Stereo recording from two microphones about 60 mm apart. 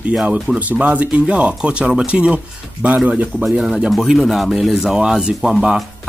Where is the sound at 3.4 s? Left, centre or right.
Centre.